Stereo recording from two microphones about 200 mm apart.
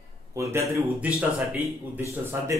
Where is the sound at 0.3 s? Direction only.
15° right (ahead or behind).